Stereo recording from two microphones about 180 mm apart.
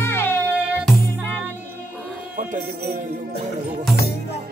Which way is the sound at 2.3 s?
50° right (ahead or behind).